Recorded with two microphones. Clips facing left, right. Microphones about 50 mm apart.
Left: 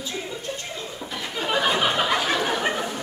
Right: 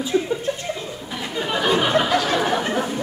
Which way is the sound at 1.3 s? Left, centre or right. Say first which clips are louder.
Right 2 dB; centre.